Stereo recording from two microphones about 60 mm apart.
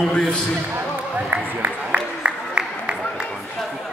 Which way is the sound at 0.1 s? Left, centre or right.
Centre.